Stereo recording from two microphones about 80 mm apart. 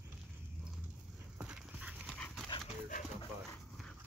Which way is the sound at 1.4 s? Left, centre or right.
Centre.